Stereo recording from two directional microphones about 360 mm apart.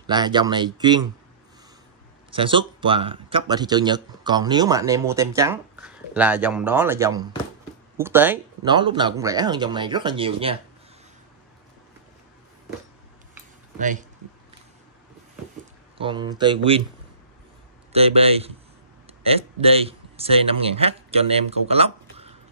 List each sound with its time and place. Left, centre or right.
0.0 s speech: centre
2.3 s speech: centre
13.7 s speech: right
16.0 s speech: centre
17.9 s speech: centre